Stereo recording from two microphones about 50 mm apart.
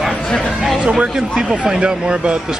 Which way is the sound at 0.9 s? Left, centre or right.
Centre.